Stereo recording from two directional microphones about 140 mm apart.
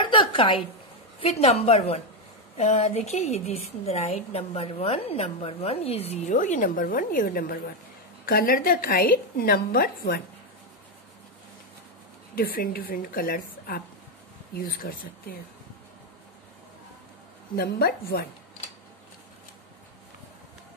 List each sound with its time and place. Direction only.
0.0 s a sound: 35° left (ahead or behind)
1.2 s a woman's voice: 50° left (ahead or behind); by 10.2 s 90° left
12.4 s a woman's voice: 90° left
17.6 s a woman's voice: 90° left